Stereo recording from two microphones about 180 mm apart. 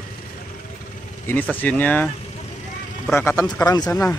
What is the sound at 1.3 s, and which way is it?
Speech, 10° left (ahead or behind).